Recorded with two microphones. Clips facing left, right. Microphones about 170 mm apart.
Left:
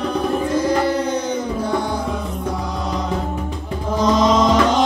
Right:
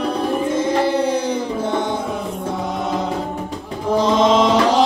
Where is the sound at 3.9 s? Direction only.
30° right (ahead or behind).